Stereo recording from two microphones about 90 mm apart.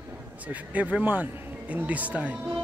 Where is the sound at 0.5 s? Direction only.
15° right (ahead or behind).